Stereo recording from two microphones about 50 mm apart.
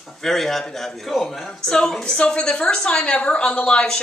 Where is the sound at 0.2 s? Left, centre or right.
Centre.